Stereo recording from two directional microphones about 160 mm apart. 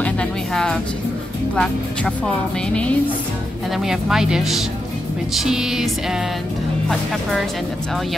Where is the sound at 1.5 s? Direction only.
5° left (ahead or behind).